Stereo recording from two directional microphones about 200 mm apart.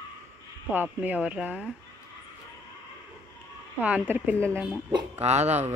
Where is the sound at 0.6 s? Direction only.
10° right (ahead or behind).